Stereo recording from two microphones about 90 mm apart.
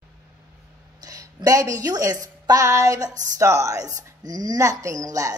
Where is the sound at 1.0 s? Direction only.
45° right (ahead or behind).